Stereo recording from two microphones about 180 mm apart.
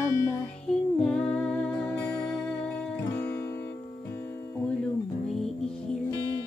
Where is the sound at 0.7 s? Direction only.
5° left (ahead or behind).